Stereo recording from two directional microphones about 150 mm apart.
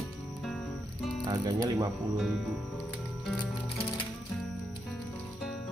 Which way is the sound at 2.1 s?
Centre (ahead or behind).